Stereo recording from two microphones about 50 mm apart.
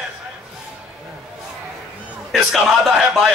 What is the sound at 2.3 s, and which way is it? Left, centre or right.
Music, centre.